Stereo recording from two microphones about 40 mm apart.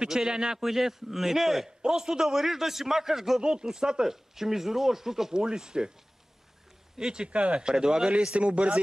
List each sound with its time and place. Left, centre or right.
0.0 s a man's voice: centre
0.6 s speech: centre
1.8 s speech: centre
7.0 s a man's voice: centre
7.2 s speech: right
7.6 s a man's voice: centre